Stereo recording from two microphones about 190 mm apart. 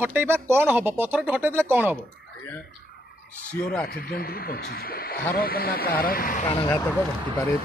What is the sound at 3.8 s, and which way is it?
Speech, 55° left (ahead or behind).